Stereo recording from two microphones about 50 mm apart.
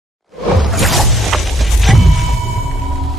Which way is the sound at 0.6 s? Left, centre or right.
Centre.